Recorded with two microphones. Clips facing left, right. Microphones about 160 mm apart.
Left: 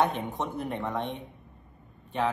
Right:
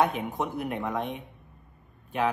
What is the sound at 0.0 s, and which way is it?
Speech, centre (ahead or behind).